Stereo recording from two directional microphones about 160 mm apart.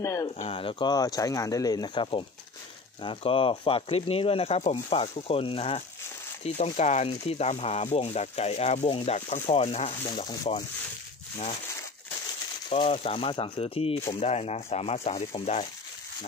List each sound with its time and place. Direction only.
0.0 s speech: 20° left (ahead or behind)
0.4 s speech: 35° left (ahead or behind)
12.6 s speech: 35° left (ahead or behind)